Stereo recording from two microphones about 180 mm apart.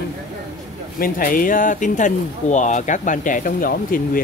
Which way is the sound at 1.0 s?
50° left (ahead or behind).